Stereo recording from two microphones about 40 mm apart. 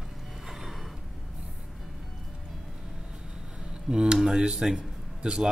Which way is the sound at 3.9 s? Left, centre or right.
Right.